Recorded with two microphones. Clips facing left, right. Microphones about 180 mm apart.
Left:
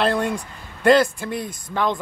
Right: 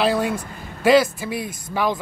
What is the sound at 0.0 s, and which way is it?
Speech, 5° right (ahead or behind).